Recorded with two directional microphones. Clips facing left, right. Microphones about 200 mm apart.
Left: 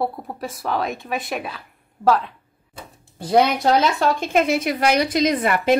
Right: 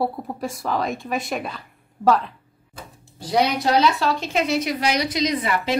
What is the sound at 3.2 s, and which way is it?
A woman's voice, 50° left (ahead or behind).